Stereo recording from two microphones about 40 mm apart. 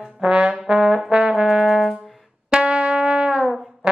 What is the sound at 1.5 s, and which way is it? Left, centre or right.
Brass instrument, centre.